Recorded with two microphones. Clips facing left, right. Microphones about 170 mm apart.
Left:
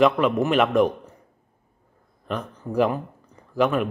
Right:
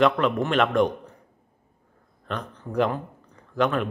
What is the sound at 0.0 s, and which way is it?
Speech, 5° left (ahead or behind).